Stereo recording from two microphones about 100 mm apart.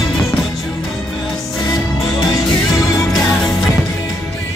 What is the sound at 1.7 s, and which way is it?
Music, 35° left (ahead or behind).